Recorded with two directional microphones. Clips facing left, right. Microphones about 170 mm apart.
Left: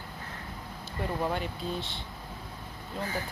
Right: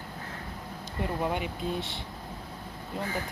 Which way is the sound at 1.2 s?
10° right (ahead or behind).